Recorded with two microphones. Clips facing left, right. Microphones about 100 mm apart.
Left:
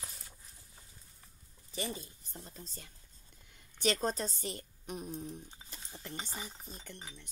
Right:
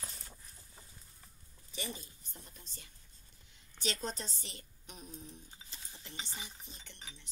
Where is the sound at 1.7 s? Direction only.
35° left (ahead or behind).